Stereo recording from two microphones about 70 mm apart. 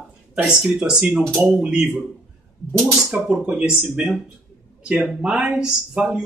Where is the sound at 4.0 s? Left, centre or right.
Centre.